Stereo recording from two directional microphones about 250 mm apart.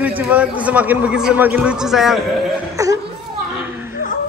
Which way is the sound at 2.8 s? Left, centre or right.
Centre.